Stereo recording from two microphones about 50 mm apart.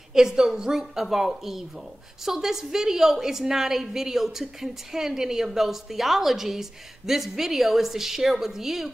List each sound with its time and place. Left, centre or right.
0.1 s a woman's voice: centre